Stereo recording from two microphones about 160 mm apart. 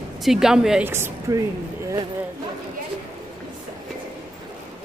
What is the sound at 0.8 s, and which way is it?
Speech, 15° right (ahead or behind).